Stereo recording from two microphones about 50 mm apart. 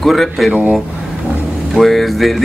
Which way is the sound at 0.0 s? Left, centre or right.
Centre.